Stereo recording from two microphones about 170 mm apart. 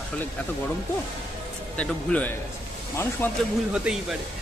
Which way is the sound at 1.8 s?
5° left (ahead or behind).